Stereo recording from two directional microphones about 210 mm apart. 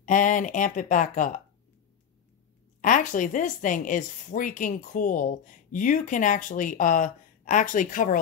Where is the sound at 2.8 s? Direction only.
35° left (ahead or behind).